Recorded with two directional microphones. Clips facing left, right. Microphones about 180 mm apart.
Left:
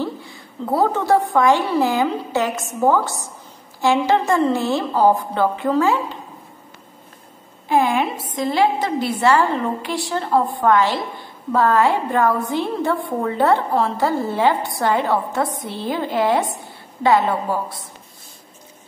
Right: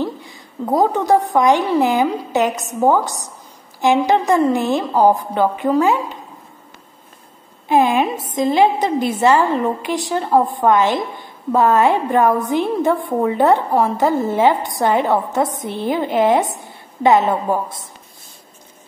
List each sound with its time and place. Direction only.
0.0 s a woman's voice: 15° right (ahead or behind)
7.6 s a woman's voice: 20° right (ahead or behind)